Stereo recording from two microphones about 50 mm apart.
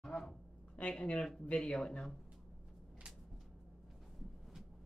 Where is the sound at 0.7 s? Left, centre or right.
Left.